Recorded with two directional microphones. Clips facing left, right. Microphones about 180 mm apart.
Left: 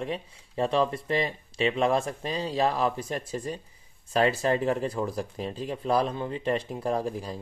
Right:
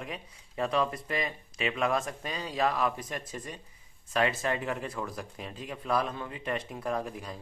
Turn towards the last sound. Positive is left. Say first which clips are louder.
# left 5 dB
turn(degrees=35)  # may be behind; listen again after turning